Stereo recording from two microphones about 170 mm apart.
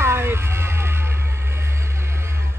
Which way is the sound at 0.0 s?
15° right (ahead or behind).